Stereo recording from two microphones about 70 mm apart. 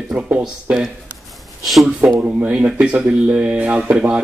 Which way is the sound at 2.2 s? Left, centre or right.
Centre.